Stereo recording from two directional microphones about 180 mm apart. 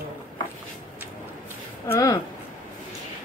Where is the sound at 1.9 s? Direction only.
20° left (ahead or behind).